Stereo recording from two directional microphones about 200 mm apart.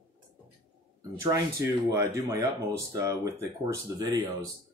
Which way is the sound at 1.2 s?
15° right (ahead or behind).